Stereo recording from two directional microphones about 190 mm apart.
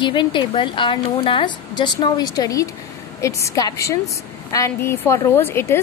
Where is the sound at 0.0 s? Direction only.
25° left (ahead or behind).